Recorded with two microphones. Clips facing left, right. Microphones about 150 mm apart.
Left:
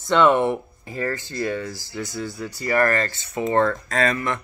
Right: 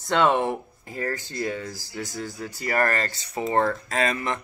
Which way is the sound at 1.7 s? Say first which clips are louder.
Left 3 dB; 45° right (ahead or behind).